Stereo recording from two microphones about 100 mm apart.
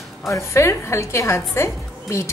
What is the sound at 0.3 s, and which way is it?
A woman's voice, 30° left (ahead or behind).